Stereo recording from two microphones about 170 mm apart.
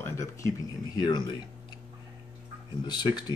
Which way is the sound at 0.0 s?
15° left (ahead or behind).